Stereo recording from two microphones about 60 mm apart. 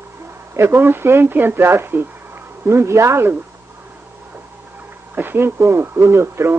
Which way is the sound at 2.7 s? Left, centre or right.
Right.